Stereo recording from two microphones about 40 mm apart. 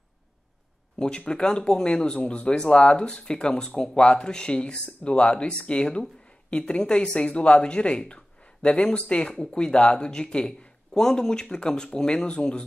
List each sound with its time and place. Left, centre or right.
0.9 s speech: left
10.9 s speech: centre